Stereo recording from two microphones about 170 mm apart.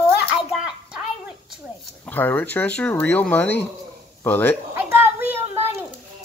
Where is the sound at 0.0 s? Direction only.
5° right (ahead or behind).